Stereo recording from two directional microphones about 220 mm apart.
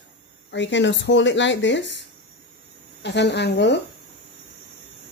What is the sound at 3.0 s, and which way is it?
Speech, 50° left (ahead or behind).